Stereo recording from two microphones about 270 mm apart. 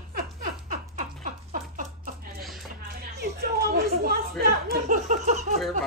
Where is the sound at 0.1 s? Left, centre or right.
Right.